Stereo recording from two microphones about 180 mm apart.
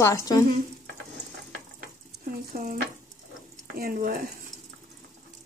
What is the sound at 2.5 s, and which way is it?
Speech, 50° right (ahead or behind).